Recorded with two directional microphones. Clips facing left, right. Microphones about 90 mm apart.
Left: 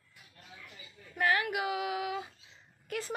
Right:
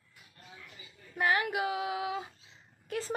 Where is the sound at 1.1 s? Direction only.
20° right (ahead or behind).